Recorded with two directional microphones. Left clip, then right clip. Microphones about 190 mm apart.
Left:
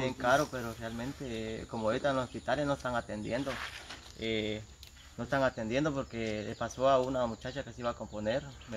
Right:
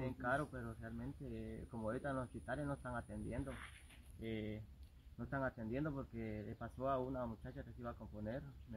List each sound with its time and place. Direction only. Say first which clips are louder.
0.0 s speech: left 13 dB; 10° left (ahead or behind)